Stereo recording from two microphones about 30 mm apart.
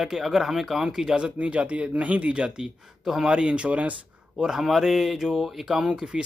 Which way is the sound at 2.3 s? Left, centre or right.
Right.